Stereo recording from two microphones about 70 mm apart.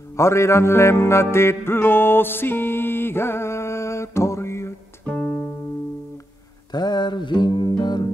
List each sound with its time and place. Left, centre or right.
0.2 s music: left
5.0 s music: centre
6.7 s music: left